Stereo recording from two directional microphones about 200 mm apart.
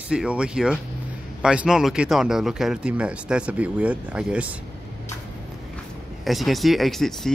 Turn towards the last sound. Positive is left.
turn(degrees=0)  # may be behind; listen again after turning